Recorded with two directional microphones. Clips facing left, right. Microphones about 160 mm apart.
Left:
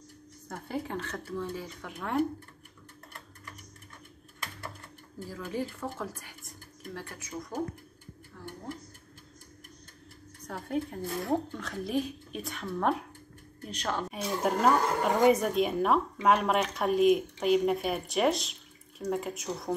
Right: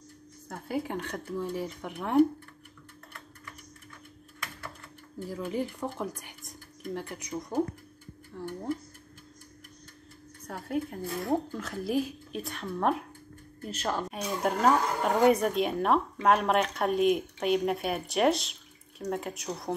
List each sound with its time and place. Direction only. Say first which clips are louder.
0.5 s speech: right 2 dB; 5° right (ahead or behind)
5.3 s speech: right 2 dB; 15° right (ahead or behind)
10.4 s speech: even; 5° right (ahead or behind)